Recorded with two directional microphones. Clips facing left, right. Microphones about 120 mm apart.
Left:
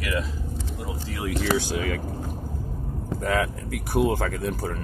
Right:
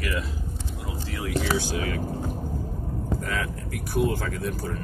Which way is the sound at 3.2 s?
90° left.